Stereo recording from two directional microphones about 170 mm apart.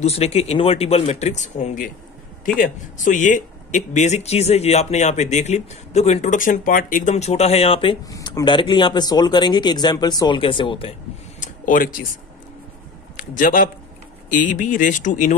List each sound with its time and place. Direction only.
0.0 s speech: 40° left (ahead or behind)
11.3 s a sound: 50° left (ahead or behind)
13.1 s a man's voice: 50° left (ahead or behind)